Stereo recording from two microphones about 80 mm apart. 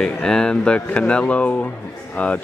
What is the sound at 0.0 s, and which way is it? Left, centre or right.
Speech, centre.